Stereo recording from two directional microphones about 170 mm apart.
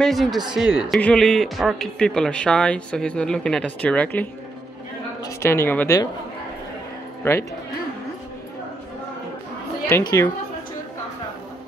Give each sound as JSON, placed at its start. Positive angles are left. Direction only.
{"t": 0.0, "sound": "a woman's voice", "side_deg": 0}
{"t": 7.2, "sound": "a woman's voice", "side_deg": 15}
{"t": 9.9, "sound": "a woman's voice", "side_deg": 15}